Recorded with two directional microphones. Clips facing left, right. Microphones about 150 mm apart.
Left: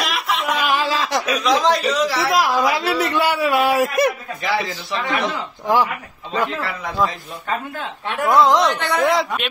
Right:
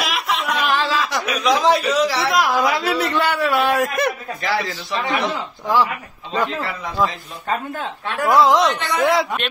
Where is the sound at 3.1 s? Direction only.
10° left (ahead or behind).